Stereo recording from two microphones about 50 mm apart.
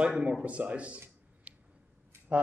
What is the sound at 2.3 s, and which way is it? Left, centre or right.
Speech, right.